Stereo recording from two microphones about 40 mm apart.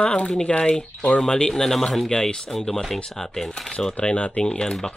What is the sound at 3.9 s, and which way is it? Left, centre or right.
Speech, left.